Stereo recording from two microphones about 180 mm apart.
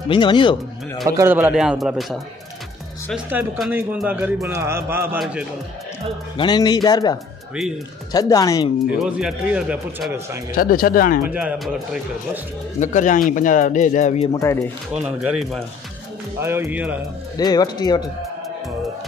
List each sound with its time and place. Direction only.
0.1 s speech: 25° left (ahead or behind)
1.0 s speech: 15° right (ahead or behind); by 2.1 s centre (ahead or behind)
3.3 s a man's voice: 5° right (ahead or behind)
6.3 s speech: 25° left (ahead or behind)
9.0 s a man's voice: 5° right (ahead or behind)
10.5 s speech: 55° left (ahead or behind)
11.2 s a man's voice: 10° right (ahead or behind)
12.8 s speech: 45° left (ahead or behind)
14.3 s speech: 15° left (ahead or behind)
15.0 s speech: 5° right (ahead or behind)
16.3 s a man's voice: 15° right (ahead or behind)
17.4 s speech: 20° left (ahead or behind)